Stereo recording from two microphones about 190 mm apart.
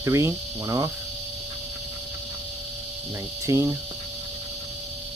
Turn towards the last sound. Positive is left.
turn(degrees=-15)  # may be behind; listen again after turning